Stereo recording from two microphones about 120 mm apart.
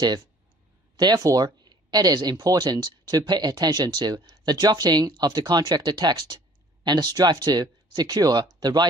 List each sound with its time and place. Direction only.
0.9 s speech: 35° right (ahead or behind)